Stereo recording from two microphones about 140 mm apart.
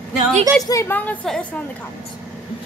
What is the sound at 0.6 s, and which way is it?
Speech, 25° left (ahead or behind).